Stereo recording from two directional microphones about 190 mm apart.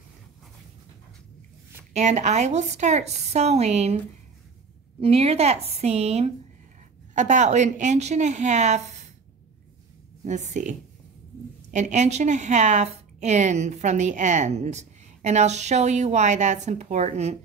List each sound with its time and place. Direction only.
2.0 s a woman's voice: 35° right (ahead or behind)
5.0 s a woman's voice: 30° right (ahead or behind)
10.2 s a woman's voice: 40° right (ahead or behind)